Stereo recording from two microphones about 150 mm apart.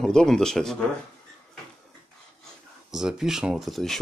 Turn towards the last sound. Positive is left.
turn(degrees=0)  # may be behind; listen again after turning